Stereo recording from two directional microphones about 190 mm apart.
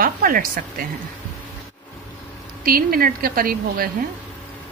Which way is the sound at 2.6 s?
50° right (ahead or behind).